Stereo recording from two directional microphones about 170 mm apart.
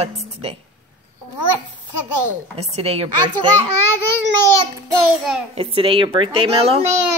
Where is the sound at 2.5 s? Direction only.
35° right (ahead or behind).